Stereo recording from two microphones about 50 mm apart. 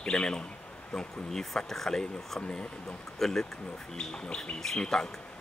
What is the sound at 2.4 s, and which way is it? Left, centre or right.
Speech, left.